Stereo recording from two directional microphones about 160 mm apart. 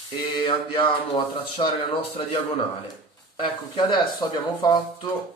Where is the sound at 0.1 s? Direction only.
30° left (ahead or behind).